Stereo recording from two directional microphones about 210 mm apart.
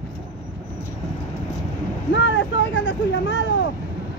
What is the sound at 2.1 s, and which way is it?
Vehicle, 60° left (ahead or behind).